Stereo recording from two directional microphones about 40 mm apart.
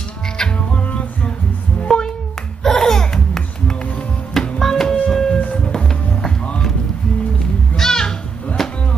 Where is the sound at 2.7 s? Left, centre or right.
Centre.